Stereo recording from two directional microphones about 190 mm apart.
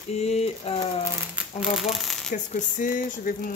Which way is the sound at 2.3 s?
45° left (ahead or behind).